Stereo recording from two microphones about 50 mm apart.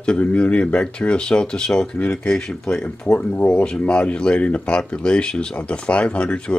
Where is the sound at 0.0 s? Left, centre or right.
Left.